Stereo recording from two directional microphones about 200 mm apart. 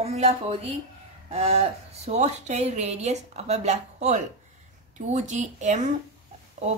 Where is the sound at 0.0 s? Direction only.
30° right (ahead or behind).